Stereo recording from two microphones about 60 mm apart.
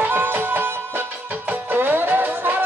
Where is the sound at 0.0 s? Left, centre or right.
Right.